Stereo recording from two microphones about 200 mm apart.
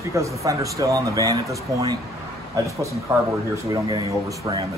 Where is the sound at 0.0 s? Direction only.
15° right (ahead or behind).